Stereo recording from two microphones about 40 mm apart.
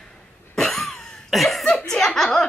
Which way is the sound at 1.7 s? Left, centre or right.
Centre.